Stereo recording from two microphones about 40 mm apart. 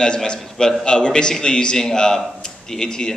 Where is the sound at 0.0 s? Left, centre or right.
Left.